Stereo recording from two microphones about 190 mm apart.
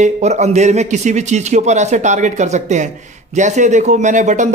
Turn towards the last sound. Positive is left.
turn(degrees=-40)  # may be behind; listen again after turning